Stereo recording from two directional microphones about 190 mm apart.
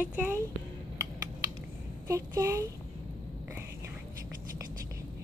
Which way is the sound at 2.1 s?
15° right (ahead or behind).